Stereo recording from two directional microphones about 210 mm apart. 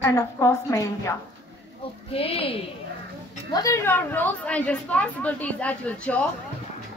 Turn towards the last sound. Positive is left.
turn(degrees=5)  # may be behind; listen again after turning